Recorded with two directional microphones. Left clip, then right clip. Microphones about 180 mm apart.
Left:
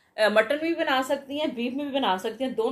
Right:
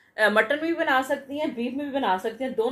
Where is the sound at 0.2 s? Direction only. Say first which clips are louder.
Even; centre (ahead or behind).